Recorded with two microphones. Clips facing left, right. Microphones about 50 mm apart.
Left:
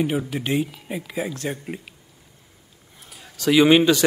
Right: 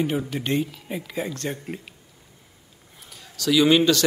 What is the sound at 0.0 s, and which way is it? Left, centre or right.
Speech, centre.